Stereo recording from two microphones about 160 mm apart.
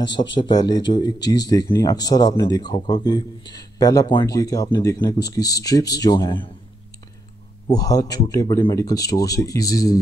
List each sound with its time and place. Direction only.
0.0 s speech: 30° left (ahead or behind)
7.6 s speech: 20° left (ahead or behind)